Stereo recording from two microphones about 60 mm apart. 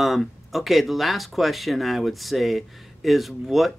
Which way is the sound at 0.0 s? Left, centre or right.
Centre.